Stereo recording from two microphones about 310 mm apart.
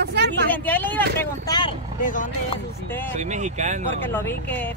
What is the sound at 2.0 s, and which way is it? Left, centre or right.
Speech, left.